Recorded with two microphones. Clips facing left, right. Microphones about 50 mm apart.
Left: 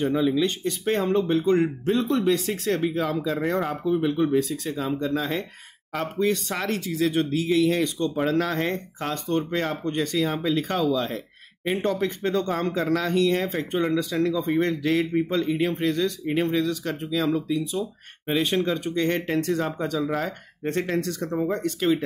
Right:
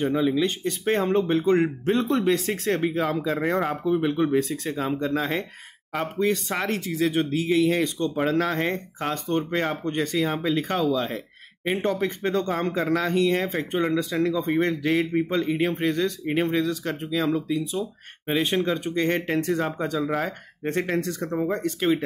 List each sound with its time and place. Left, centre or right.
0.0 s speech: centre
0.8 s speech: right
5.9 s speech: centre